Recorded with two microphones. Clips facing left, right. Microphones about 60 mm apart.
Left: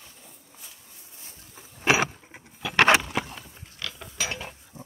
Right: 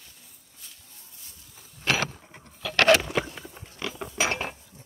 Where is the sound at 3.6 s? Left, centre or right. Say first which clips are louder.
Right 7 dB; centre.